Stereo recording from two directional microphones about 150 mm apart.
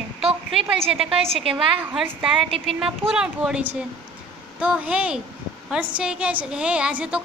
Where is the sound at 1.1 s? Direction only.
40° right (ahead or behind).